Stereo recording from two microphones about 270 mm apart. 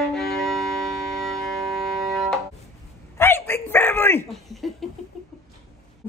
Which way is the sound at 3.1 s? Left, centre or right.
Centre.